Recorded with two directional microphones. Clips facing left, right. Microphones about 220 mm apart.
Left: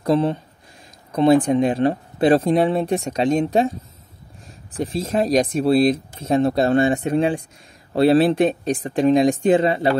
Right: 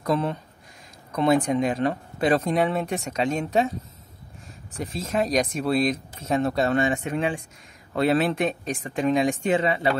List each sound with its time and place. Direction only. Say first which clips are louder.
0.0 s speech: left 6 dB; 30° left (ahead or behind)
4.7 s speech: left 5 dB; 35° left (ahead or behind)